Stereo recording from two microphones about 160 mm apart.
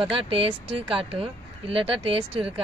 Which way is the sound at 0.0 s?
35° right (ahead or behind).